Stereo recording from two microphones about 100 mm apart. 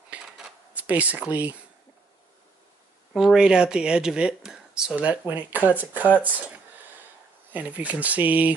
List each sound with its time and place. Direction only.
0.1 s dishes: 10° right (ahead or behind)
3.2 s speech: 5° right (ahead or behind)
7.5 s speech: 15° right (ahead or behind)